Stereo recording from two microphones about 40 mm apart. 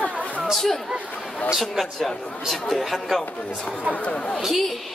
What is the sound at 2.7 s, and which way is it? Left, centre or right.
Speech, centre.